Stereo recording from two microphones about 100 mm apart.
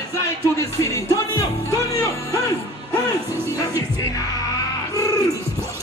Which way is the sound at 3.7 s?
35° left (ahead or behind).